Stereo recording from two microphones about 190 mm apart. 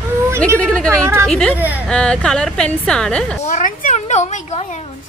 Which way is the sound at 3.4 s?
40° left (ahead or behind).